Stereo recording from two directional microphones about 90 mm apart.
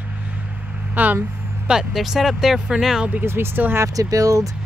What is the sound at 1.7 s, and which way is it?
Speech, 5° right (ahead or behind).